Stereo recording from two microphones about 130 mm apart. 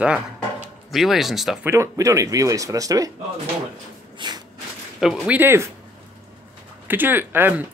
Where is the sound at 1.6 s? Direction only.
20° right (ahead or behind).